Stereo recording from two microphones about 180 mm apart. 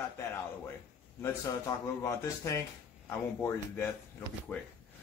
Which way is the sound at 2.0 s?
15° left (ahead or behind).